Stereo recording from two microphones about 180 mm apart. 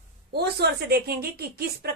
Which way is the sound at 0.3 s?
65° right (ahead or behind).